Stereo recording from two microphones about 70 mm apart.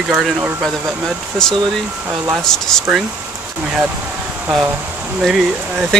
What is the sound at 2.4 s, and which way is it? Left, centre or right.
Speech, centre.